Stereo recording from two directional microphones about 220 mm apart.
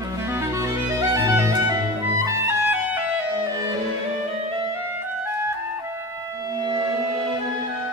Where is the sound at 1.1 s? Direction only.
15° right (ahead or behind).